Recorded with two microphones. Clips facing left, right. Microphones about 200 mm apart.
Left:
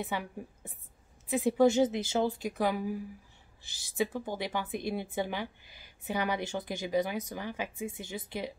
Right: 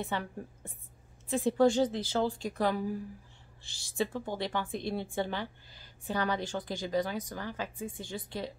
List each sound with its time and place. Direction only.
0.0 s speech: 10° left (ahead or behind)